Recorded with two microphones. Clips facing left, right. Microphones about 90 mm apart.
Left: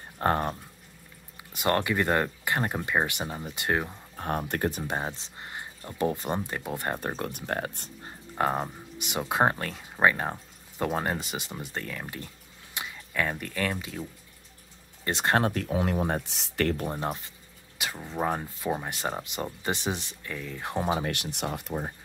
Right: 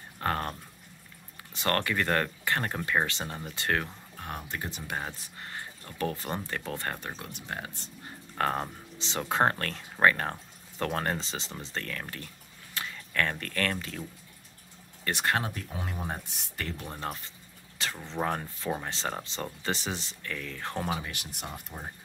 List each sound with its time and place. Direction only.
0.2 s speech: 25° left (ahead or behind)
4.2 s speech: 40° left (ahead or behind)
4.5 s speech: 55° left (ahead or behind)
4.8 s speech: 25° left (ahead or behind)
7.2 s speech: 50° left (ahead or behind)
8.4 s speech: 10° left (ahead or behind)
15.0 s speech: 20° left (ahead or behind)
15.4 s speech: 65° left (ahead or behind); by 16.7 s 80° left
16.8 s speech: 20° left (ahead or behind)
17.7 s speech: 10° left (ahead or behind)
21.0 s speech: 65° left (ahead or behind)